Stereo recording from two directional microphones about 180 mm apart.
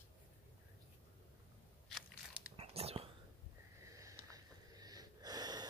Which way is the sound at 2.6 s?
35° right (ahead or behind).